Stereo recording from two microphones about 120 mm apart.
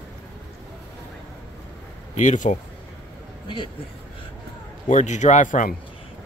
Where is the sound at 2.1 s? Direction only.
90° left.